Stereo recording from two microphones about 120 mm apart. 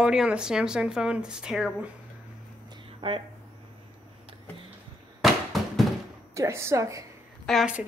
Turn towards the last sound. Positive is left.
turn(degrees=5)  # may be behind; listen again after turning